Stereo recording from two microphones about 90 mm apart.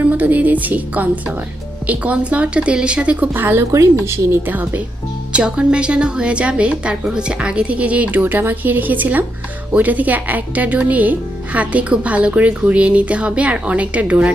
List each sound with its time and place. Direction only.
0.1 s speech: 15° right (ahead or behind)